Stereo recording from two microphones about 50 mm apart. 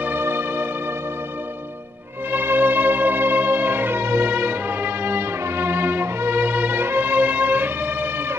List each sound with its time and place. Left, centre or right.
0.0 s music: right
2.3 s music: right